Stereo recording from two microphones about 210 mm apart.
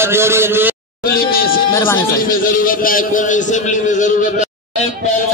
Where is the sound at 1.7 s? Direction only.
10° left (ahead or behind).